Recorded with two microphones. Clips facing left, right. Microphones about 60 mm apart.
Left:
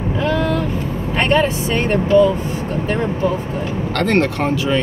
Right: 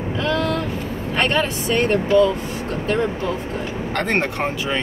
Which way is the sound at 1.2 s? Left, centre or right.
Left.